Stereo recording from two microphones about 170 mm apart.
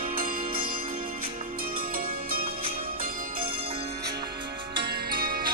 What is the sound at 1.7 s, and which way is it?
Music, 55° right (ahead or behind).